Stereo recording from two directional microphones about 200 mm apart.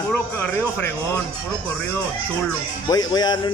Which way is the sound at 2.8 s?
20° left (ahead or behind).